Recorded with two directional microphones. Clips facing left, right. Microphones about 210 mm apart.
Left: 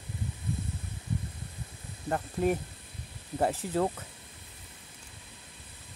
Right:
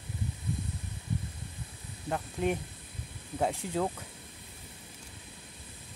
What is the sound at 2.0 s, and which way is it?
Speech, 5° left (ahead or behind).